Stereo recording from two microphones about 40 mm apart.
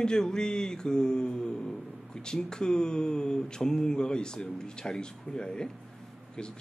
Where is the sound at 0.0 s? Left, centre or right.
Centre.